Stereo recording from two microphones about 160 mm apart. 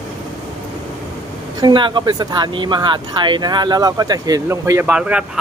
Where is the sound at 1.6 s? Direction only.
30° right (ahead or behind).